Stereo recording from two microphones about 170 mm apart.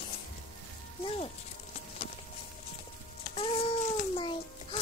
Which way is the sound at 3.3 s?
35° left (ahead or behind).